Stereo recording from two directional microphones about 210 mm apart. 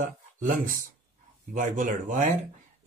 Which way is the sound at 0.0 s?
40° right (ahead or behind).